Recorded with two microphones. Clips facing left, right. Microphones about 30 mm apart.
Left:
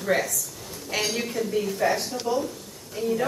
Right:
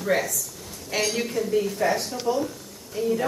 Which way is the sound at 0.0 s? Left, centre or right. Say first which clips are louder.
Even; centre.